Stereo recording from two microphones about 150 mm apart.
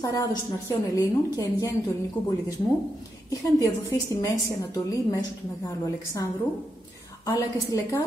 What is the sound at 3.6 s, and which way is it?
Speech, 20° left (ahead or behind).